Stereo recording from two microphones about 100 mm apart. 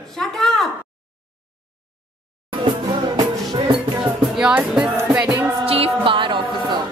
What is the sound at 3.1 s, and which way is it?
Music, 45° right (ahead or behind).